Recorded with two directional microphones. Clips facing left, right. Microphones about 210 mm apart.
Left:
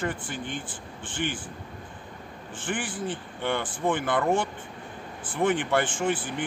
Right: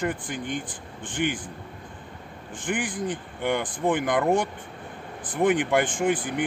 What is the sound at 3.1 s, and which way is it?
Speech, 15° right (ahead or behind).